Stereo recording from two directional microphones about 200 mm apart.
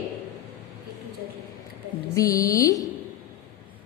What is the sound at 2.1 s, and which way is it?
Speech, 15° left (ahead or behind).